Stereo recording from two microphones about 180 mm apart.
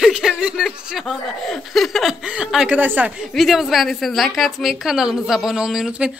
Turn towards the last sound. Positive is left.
turn(degrees=-5)  # may be behind; listen again after turning